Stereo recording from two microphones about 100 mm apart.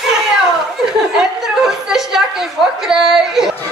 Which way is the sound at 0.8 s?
5° right (ahead or behind).